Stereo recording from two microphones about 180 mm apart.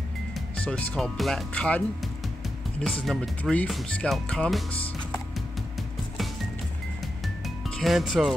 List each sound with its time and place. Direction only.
0.3 s speech: 5° left (ahead or behind)
2.8 s speech: 5° left (ahead or behind)
7.4 s music: centre (ahead or behind)